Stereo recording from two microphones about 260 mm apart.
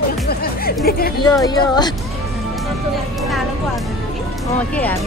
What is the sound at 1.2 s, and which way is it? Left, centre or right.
Speech, centre.